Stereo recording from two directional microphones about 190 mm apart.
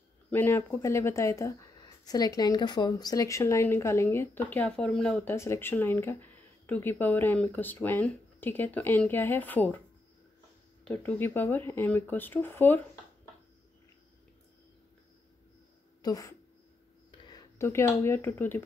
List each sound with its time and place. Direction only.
0.3 s speech: 10° left (ahead or behind)
10.9 s speech: 10° left (ahead or behind)
16.0 s speech: 20° left (ahead or behind)